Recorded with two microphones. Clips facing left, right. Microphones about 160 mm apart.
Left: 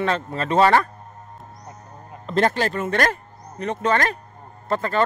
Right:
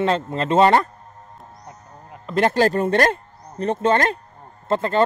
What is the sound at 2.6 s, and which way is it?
Speech, 40° right (ahead or behind).